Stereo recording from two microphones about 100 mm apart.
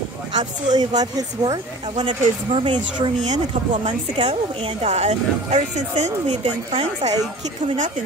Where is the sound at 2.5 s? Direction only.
70° right (ahead or behind).